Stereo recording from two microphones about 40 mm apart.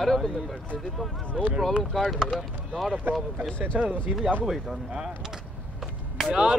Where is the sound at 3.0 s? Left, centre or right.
Right.